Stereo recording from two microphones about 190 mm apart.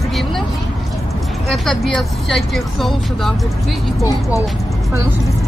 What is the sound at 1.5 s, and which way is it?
Speech, centre (ahead or behind).